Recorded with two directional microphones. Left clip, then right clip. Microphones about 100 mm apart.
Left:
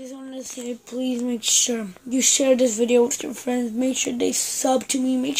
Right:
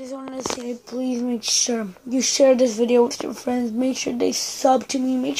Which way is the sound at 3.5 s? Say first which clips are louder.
Even; 5° left (ahead or behind).